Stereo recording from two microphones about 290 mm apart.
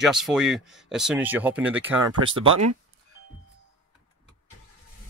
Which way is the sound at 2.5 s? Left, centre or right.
Right.